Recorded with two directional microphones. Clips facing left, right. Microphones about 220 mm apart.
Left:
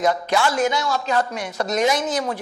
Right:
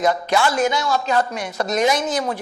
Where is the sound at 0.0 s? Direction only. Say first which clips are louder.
Right 1 dB; 10° right (ahead or behind).